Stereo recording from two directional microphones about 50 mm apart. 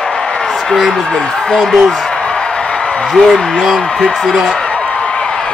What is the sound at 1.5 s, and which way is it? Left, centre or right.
Speech, centre.